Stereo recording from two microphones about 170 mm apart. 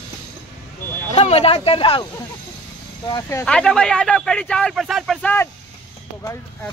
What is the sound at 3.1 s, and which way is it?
Speech, 20° left (ahead or behind).